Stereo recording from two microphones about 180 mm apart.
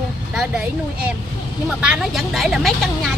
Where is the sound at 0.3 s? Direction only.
5° right (ahead or behind).